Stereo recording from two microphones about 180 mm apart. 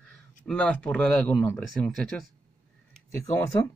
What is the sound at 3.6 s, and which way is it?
Speech, 20° left (ahead or behind).